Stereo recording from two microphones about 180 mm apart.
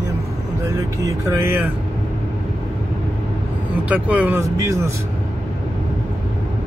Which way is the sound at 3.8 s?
10° right (ahead or behind).